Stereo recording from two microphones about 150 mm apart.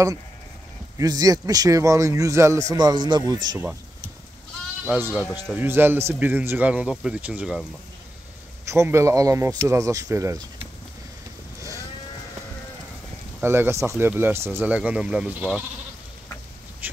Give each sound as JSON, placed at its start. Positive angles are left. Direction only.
{"t": 0.9, "sound": "a man's voice", "side_deg": -25}
{"t": 4.8, "sound": "speech", "side_deg": -10}
{"t": 8.6, "sound": "a man's voice", "side_deg": -20}
{"t": 13.4, "sound": "speech", "side_deg": -15}
{"t": 16.8, "sound": "duck", "side_deg": -10}